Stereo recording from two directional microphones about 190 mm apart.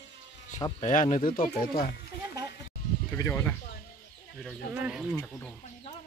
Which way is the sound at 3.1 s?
15° left (ahead or behind).